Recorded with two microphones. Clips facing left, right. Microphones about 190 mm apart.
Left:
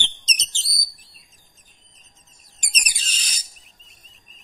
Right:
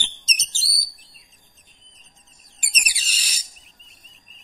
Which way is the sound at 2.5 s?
10° right (ahead or behind).